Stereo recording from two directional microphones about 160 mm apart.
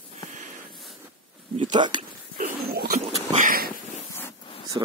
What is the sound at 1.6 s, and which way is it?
Speech, 30° right (ahead or behind).